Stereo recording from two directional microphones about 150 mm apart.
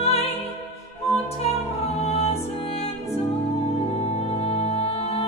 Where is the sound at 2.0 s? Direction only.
45° left (ahead or behind).